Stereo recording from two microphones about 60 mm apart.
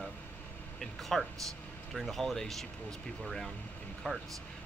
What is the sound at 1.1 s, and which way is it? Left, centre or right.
Speech, centre.